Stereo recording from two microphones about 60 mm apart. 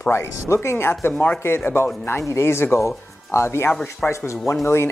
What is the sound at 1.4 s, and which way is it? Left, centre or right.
Speech, left.